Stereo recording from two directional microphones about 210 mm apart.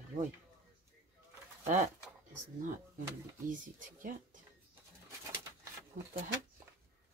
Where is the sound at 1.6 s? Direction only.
35° right (ahead or behind).